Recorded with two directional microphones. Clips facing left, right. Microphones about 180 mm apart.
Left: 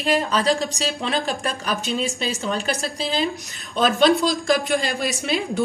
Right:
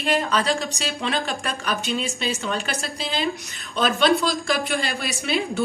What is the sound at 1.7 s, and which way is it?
Speech, centre (ahead or behind).